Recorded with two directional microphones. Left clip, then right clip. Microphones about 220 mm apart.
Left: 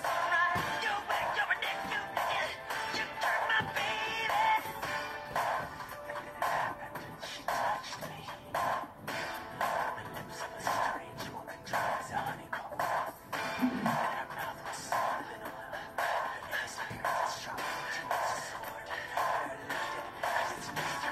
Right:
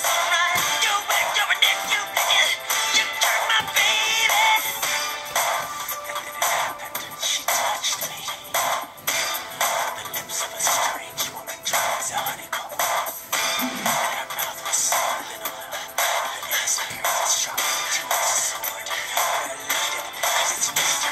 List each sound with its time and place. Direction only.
0.0 s music: 20° right (ahead or behind)